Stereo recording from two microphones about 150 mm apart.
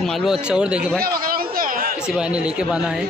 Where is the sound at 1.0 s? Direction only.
75° right (ahead or behind).